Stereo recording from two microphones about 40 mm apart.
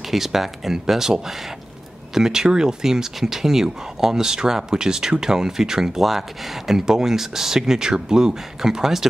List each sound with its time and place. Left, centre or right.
0.1 s speech: centre